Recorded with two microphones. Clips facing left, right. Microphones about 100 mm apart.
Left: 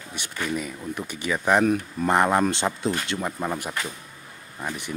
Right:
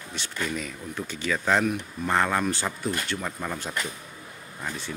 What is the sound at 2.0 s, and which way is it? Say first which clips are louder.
Speech: left 4 dB; 20° left (ahead or behind).